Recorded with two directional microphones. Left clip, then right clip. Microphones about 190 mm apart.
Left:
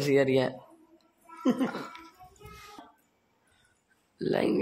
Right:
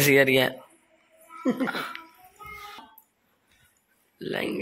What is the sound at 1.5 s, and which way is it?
Speech, 10° right (ahead or behind).